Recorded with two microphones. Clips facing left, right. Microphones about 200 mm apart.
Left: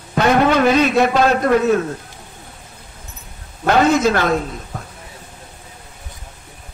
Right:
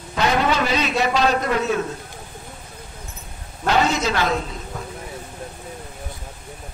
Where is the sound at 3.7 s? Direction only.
50° left (ahead or behind).